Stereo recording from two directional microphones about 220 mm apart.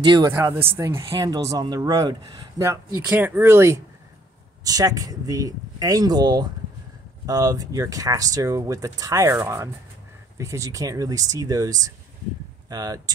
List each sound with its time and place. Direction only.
0.0 s speech: 20° right (ahead or behind)
3.1 s speech: 5° right (ahead or behind)